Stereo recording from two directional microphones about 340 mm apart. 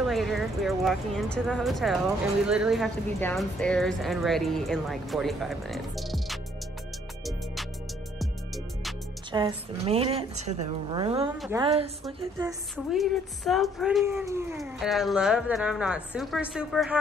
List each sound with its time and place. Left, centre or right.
0.0 s speech: centre
9.3 s a woman's voice: centre
11.2 s speech: centre
11.6 s a woman's voice: centre
12.7 s speech: centre